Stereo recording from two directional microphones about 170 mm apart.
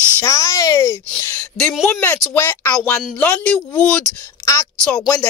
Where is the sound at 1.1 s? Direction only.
10° left (ahead or behind).